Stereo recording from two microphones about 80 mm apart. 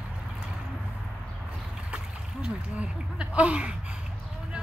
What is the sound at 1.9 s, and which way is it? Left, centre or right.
Speech, centre.